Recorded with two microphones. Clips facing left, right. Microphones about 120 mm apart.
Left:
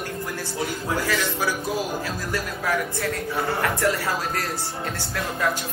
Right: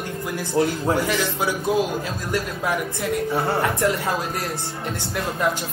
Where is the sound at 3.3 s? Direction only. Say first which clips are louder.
Right 1 dB; 20° right (ahead or behind).